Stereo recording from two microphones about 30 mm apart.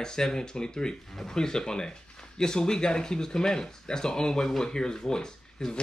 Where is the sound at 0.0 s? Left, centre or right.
Left.